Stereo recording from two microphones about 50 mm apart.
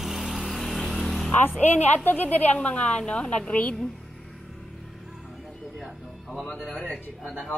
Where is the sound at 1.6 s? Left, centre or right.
Left.